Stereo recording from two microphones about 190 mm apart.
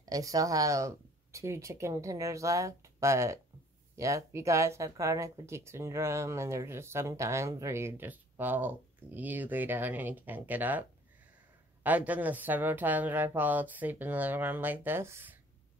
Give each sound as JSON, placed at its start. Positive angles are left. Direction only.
{"t": 0.0, "sound": "speech", "side_deg": -20}